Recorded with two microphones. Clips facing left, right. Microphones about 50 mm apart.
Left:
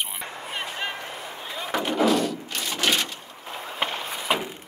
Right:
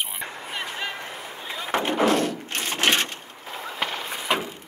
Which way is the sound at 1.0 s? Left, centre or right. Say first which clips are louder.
Even; right.